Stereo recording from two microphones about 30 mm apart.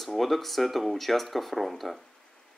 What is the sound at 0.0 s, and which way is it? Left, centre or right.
Speech, centre.